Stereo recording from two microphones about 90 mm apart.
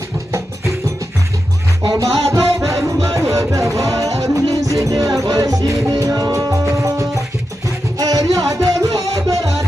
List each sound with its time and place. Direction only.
2.0 s music: 90° right
2.3 s music: 35° right (ahead or behind)